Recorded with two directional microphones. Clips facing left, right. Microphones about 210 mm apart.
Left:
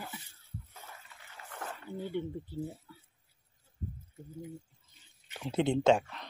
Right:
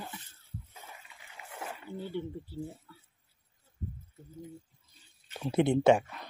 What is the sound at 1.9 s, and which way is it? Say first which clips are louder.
Speech: left 1 dB; 15° left (ahead or behind).